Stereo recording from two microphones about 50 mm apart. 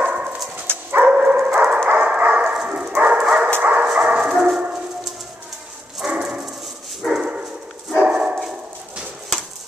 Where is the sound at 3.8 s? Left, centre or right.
Centre.